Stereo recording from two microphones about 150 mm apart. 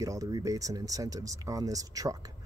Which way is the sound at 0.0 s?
20° right (ahead or behind).